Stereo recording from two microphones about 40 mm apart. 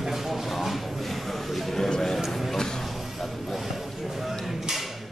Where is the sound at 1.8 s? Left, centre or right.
Centre.